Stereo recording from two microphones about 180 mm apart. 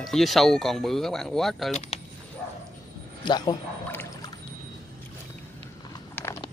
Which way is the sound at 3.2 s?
20° left (ahead or behind).